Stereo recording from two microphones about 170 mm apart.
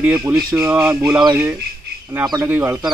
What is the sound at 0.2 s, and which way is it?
Speech, 20° right (ahead or behind).